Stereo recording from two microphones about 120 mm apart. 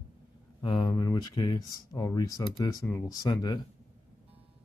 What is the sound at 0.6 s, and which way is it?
Speech, 40° left (ahead or behind).